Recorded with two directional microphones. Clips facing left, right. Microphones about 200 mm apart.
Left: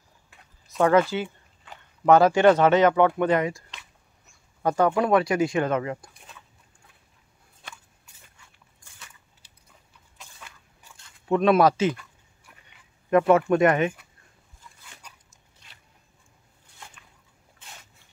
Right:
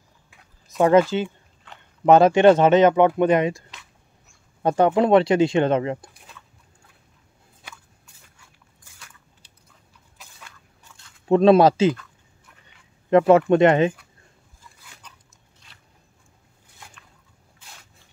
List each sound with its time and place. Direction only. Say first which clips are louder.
0.7 s speech: right 3 dB; 20° right (ahead or behind)
2.0 s speech: right 3 dB; 20° right (ahead or behind)
4.6 s speech: right 4 dB; 25° right (ahead or behind)
11.2 s speech: right 5 dB; 30° right (ahead or behind)
13.3 s speech: right 4 dB; 25° right (ahead or behind)